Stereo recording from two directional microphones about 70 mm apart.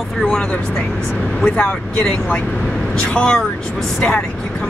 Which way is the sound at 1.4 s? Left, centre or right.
Left.